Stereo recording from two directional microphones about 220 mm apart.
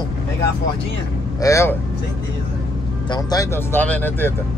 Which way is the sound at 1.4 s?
15° left (ahead or behind).